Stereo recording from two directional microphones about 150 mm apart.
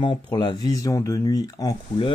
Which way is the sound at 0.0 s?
30° left (ahead or behind).